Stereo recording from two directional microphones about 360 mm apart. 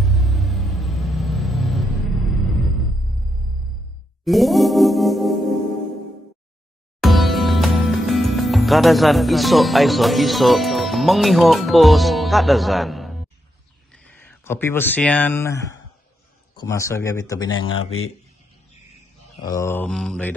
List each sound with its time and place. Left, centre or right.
0.0 s vehicle: centre
4.2 s music: centre
7.0 s music: centre
13.9 s speech: centre
17.6 s speech: left
19.5 s mantra: centre